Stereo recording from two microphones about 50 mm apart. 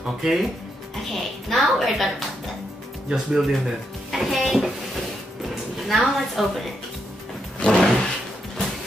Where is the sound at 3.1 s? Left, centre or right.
Centre.